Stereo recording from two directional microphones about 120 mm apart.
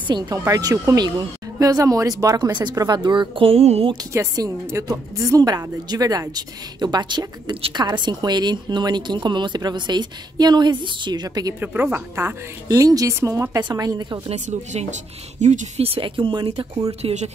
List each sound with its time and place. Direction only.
0.4 s a woman's voice: 30° right (ahead or behind); by 3.9 s 55° right (ahead or behind)
3.9 s a woman's voice: 30° right (ahead or behind)
11.6 s a woman's voice: 15° right (ahead or behind)
12.6 s speech: 30° right (ahead or behind)
14.3 s speech: 75° right (ahead or behind)
15.9 s speech: 45° right (ahead or behind)
17.0 s speech: 75° right (ahead or behind)